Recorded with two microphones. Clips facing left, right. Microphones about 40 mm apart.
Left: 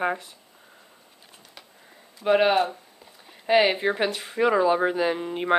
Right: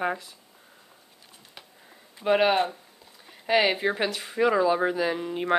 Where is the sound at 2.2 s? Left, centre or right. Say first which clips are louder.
Left 2 dB; centre.